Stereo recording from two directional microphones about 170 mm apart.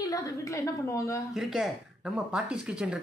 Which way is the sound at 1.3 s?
Centre (ahead or behind).